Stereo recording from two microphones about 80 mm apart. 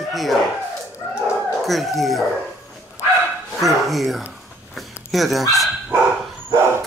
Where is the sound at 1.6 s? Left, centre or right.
Centre.